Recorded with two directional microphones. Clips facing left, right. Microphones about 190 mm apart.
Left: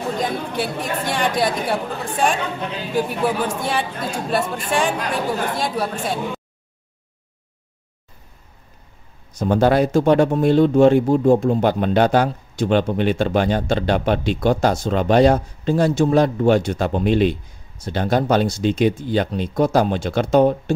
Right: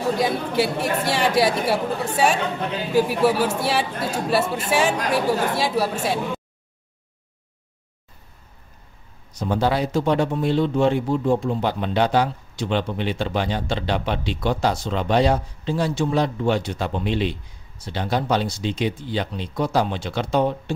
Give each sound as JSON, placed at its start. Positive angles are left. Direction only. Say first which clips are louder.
{"t": 0.2, "sound": "speech", "louder": "right 2 dB", "side_deg": -10}
{"t": 9.4, "sound": "speech", "louder": "left 6 dB", "side_deg": 50}